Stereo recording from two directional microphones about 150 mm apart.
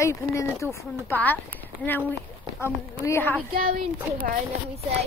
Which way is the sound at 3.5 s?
70° right (ahead or behind).